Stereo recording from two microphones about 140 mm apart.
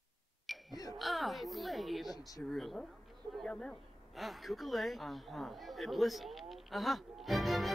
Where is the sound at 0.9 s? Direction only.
Centre (ahead or behind).